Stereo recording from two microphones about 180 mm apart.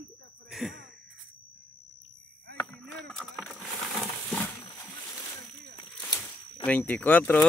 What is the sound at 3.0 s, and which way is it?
Vehicle, centre (ahead or behind).